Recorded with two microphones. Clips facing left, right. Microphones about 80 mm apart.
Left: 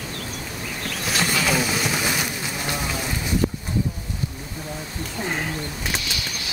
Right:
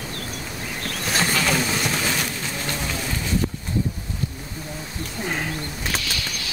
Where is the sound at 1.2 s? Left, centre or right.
Centre.